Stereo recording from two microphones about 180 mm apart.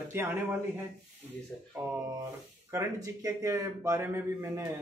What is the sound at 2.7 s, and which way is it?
A man's voice, 15° right (ahead or behind).